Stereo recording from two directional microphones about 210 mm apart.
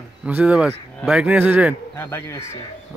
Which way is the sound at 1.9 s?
10° left (ahead or behind).